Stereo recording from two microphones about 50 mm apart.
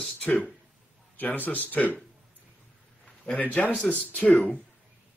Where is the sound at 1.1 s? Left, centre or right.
Left.